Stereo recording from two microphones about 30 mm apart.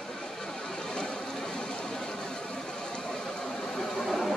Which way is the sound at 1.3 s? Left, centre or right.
Left.